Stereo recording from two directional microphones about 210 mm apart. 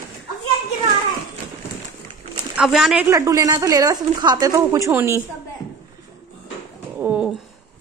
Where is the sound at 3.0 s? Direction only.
15° right (ahead or behind).